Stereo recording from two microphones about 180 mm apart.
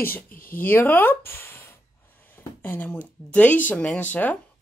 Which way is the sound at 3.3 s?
10° left (ahead or behind).